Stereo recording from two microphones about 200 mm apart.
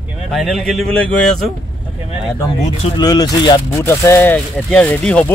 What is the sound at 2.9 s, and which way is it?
Speech, 20° left (ahead or behind).